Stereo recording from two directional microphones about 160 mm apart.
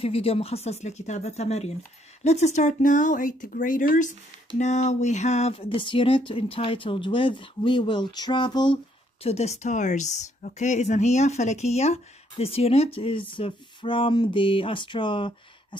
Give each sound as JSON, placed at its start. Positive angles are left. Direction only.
{"t": 0.0, "sound": "speech", "side_deg": 35}
{"t": 9.2, "sound": "speech", "side_deg": 40}